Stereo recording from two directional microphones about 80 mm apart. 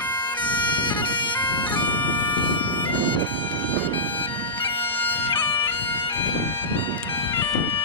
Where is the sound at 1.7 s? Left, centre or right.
Left.